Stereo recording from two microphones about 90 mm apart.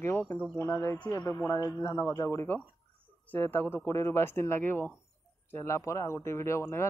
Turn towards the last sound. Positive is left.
turn(degrees=30)  # may be behind; listen again after turning